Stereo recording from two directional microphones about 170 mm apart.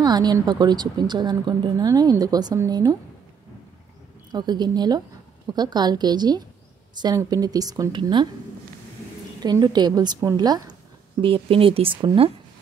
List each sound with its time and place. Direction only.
0.0 s a woman's voice: 25° right (ahead or behind)
4.3 s a woman's voice: 25° right (ahead or behind)
9.4 s a woman's voice: 25° right (ahead or behind)